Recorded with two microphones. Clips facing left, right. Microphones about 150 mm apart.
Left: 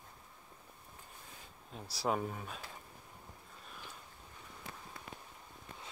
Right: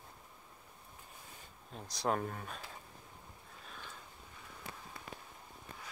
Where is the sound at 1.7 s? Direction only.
5° left (ahead or behind).